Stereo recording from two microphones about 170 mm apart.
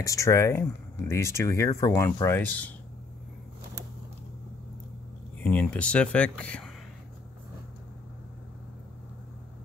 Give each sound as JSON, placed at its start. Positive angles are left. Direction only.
{"t": 0.0, "sound": "speech", "side_deg": 20}
{"t": 5.4, "sound": "speech", "side_deg": 10}